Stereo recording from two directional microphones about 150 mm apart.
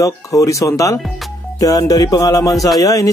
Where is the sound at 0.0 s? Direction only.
20° left (ahead or behind).